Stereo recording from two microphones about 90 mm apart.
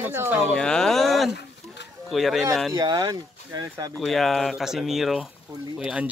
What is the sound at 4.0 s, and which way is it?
Speech, 5° left (ahead or behind).